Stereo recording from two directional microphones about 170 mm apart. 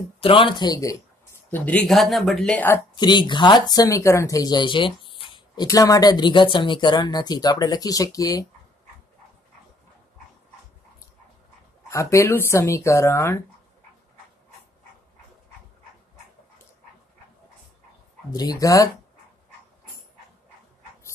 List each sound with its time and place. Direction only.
0.2 s speech: 30° left (ahead or behind)
1.5 s speech: 5° left (ahead or behind)
3.0 s speech: 25° left (ahead or behind)
11.9 s speech: 20° left (ahead or behind)
18.3 s speech: 20° left (ahead or behind)